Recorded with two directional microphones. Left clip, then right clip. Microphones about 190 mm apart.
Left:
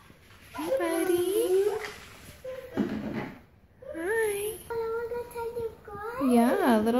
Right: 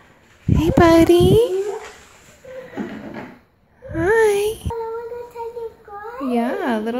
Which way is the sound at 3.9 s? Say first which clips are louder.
Right 13 dB; 50° right (ahead or behind).